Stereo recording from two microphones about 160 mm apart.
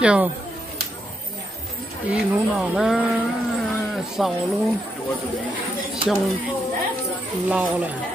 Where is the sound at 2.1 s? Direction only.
5° right (ahead or behind).